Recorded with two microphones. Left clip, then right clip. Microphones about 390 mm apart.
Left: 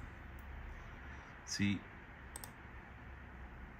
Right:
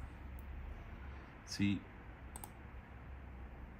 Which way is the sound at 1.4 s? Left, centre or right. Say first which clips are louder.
Even; centre.